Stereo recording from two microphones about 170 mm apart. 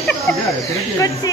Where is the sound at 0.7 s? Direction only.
20° left (ahead or behind).